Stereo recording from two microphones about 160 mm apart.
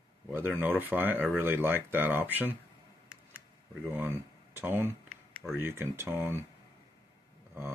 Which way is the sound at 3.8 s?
15° right (ahead or behind).